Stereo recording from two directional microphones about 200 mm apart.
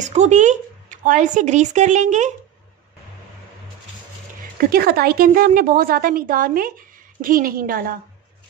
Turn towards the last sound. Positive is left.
turn(degrees=-45)  # may be behind; listen again after turning